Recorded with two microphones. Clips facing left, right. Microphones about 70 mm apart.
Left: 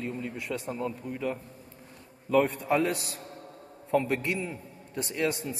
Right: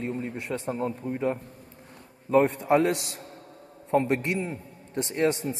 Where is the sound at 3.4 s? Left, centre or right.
Left.